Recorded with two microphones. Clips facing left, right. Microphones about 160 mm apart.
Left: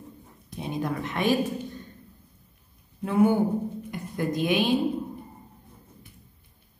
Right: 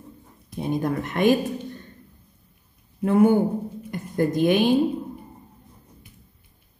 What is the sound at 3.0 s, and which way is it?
A woman's voice, 55° right (ahead or behind).